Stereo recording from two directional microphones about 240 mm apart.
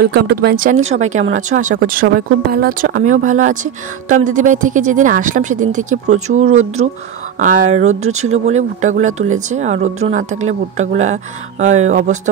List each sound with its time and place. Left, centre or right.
0.0 s speech: right